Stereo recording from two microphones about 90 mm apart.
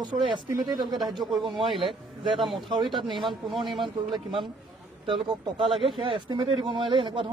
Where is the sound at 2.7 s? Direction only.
65° right (ahead or behind).